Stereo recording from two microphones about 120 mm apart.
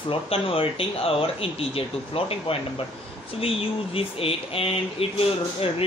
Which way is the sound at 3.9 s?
50° left (ahead or behind).